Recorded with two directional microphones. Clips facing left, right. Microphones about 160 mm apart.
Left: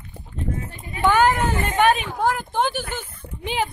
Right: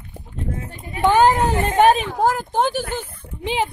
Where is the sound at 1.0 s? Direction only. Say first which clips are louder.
Right 3 dB; 30° right (ahead or behind).